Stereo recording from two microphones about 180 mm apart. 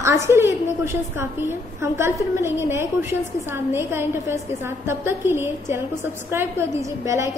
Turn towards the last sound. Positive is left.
turn(degrees=-15)  # may be behind; listen again after turning